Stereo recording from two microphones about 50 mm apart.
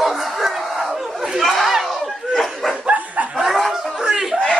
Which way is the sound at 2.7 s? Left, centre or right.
Right.